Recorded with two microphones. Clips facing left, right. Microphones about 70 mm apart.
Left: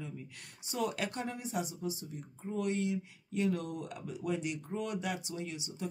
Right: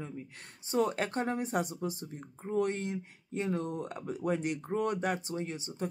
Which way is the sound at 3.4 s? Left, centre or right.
Right.